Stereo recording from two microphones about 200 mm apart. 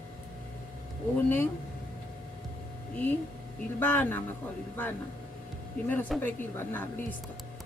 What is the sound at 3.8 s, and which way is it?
Speech, 10° left (ahead or behind).